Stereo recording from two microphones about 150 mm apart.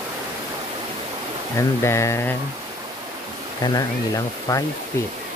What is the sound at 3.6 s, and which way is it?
Speech, 25° left (ahead or behind).